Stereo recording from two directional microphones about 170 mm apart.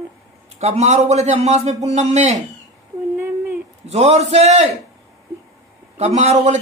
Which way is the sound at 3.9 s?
40° right (ahead or behind).